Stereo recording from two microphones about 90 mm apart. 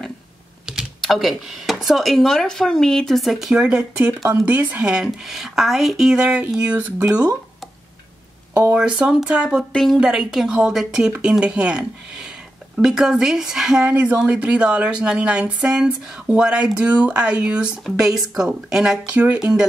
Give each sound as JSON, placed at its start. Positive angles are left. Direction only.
{"t": 0.7, "sound": "speech", "side_deg": 0}
{"t": 8.7, "sound": "speech", "side_deg": -10}
{"t": 9.7, "sound": "speech", "side_deg": 5}
{"t": 9.9, "sound": "speech", "side_deg": -10}